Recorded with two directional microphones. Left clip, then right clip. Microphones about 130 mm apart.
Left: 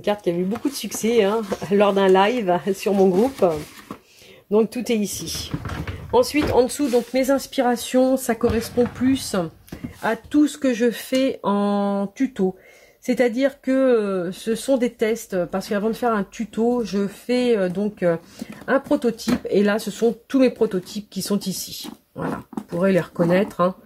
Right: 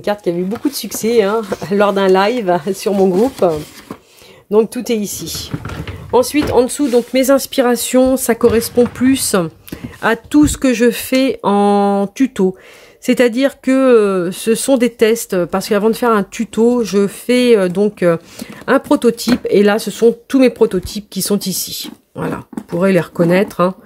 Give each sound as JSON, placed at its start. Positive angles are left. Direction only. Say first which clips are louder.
{"t": 0.0, "sound": "speech", "louder": "right 5 dB", "side_deg": -20}
{"t": 13.0, "sound": "speech", "louder": "right 7 dB", "side_deg": -50}